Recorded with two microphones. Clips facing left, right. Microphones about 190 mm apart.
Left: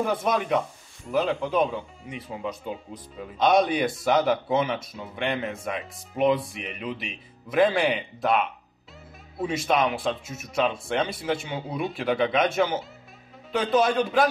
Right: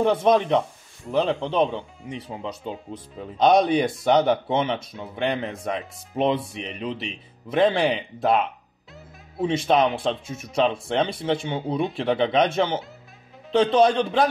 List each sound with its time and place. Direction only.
0.0 s speech: 30° right (ahead or behind)